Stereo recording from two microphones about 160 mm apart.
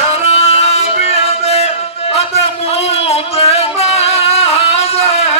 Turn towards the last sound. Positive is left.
turn(degrees=40)  # may be behind; listen again after turning